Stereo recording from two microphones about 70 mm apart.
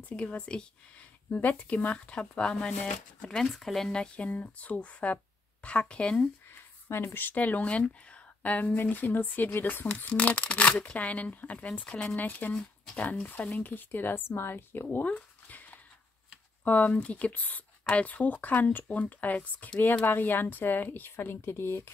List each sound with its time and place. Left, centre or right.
0.1 s speech: centre
6.9 s speech: left; by 12.2 s centre
12.2 s speech: left
12.5 s speech: centre; by 21.9 s left